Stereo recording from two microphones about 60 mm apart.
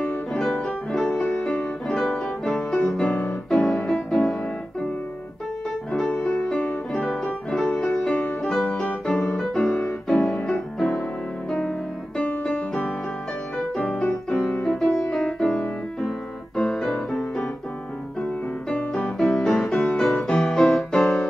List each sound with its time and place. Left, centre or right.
0.3 s music: centre
1.2 s music: left
1.9 s music: centre
6.2 s music: left
6.9 s music: centre
8.5 s music: centre
9.1 s music: left
9.4 s music: centre
13.7 s music: centre
14.5 s music: left
16.5 s music: centre
18.9 s music: centre